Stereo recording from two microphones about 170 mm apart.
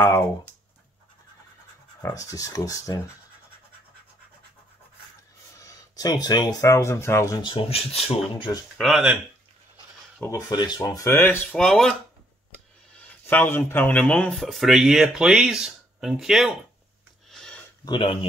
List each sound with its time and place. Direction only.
2.0 s speech: 20° left (ahead or behind)
5.6 s speech: 20° left (ahead or behind)
7.4 s speech: 30° left (ahead or behind)
8.7 s speech: centre (ahead or behind)
10.2 s speech: 20° left (ahead or behind); by 11.9 s 5° left (ahead or behind)
12.9 s speech: 10° left (ahead or behind)
17.3 s a sound: 5° left (ahead or behind)
17.8 s speech: 25° left (ahead or behind)